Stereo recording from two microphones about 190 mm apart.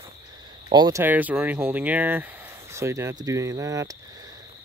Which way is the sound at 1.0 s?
10° right (ahead or behind).